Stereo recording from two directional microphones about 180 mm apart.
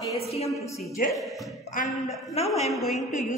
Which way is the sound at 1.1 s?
Centre (ahead or behind).